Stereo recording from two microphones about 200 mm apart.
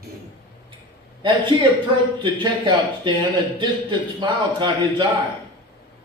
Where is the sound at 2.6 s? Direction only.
25° right (ahead or behind).